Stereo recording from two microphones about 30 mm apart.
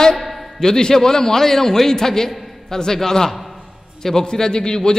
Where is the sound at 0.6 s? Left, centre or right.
Centre.